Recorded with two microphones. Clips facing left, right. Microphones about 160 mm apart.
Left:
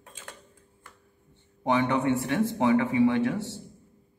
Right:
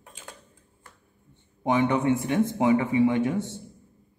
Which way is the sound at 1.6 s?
15° right (ahead or behind).